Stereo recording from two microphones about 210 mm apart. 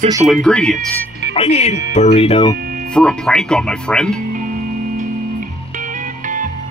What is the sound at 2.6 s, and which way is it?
Music, 45° right (ahead or behind).